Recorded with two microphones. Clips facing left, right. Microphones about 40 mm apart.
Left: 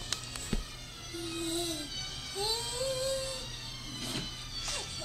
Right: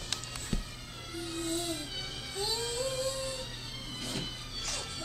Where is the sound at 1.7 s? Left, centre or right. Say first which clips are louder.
Right 1 dB; centre.